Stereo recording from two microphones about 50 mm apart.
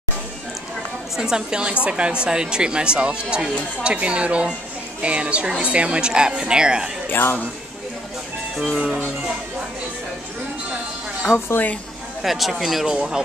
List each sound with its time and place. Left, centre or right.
1.1 s a woman's voice: centre
7.1 s speech: left
8.7 s a woman's voice: centre
12.2 s speech: centre
12.9 s a woman's voice: centre